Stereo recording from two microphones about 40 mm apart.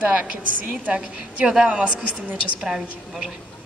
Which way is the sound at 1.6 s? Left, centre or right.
Right.